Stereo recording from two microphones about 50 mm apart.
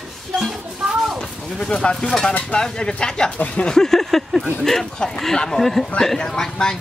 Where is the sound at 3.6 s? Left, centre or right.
Centre.